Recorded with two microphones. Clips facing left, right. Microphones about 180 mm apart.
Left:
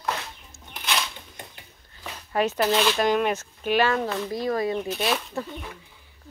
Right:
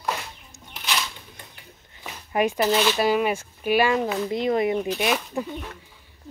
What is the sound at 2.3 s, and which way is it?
Speech, 10° right (ahead or behind).